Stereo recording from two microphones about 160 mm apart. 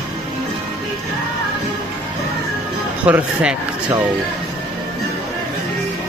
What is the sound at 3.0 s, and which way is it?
Speech, 10° right (ahead or behind).